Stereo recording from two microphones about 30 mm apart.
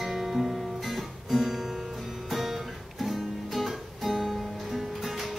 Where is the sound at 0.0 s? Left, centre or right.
Centre.